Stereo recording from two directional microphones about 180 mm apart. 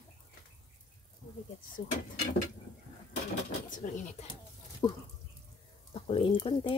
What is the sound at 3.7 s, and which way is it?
Speech, 45° left (ahead or behind).